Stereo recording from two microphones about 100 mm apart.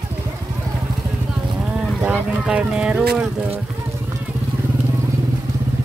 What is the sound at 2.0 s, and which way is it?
Speech, 10° right (ahead or behind).